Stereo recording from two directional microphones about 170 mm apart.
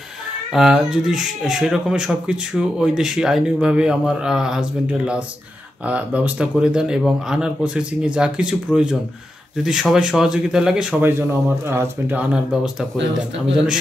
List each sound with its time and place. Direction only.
0.5 s speech: 5° right (ahead or behind)